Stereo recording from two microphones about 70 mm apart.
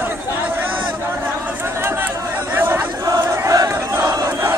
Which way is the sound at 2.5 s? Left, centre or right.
Right.